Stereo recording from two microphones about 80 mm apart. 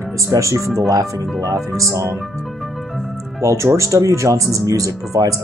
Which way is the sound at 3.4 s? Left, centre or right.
Right.